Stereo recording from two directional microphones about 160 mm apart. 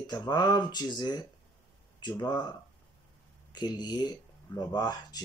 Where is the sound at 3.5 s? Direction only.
25° left (ahead or behind).